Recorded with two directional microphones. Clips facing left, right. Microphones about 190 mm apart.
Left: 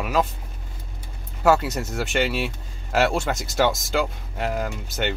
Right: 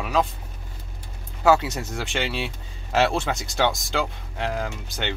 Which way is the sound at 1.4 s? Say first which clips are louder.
Even; centre (ahead or behind).